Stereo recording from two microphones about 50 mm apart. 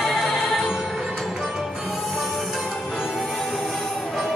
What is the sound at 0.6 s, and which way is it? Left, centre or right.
Music, centre.